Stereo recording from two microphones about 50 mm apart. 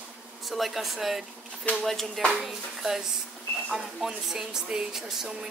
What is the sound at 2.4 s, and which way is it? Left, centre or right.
Speech, centre.